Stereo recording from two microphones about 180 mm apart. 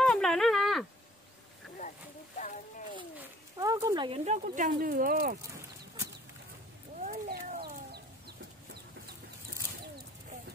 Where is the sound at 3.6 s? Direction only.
20° right (ahead or behind); by 4.7 s 45° right (ahead or behind).